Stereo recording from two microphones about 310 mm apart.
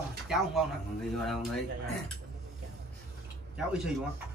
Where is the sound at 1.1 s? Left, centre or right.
Centre.